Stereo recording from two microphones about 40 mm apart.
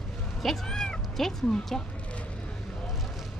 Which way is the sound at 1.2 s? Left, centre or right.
Centre.